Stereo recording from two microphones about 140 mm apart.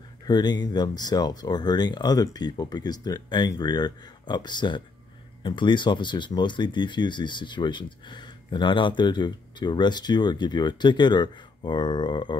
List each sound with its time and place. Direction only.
0.3 s speech: 30° left (ahead or behind)